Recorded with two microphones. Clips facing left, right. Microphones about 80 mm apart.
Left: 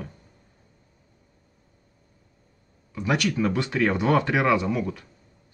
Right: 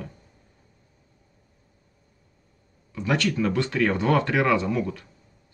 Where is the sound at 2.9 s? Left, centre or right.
Centre.